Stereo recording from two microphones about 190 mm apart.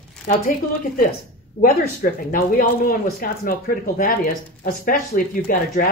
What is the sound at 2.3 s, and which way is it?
Speech, 50° left (ahead or behind).